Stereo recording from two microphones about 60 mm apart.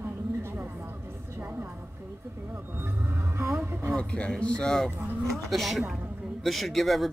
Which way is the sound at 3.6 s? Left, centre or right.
Right.